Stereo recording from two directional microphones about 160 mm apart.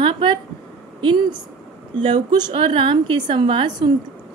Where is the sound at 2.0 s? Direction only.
30° right (ahead or behind).